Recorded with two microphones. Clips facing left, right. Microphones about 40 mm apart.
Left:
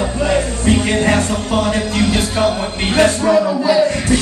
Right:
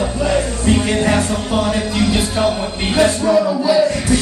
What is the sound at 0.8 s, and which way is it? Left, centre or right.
Music, left.